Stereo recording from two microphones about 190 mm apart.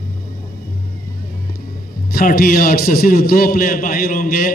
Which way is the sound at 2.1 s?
50° left (ahead or behind).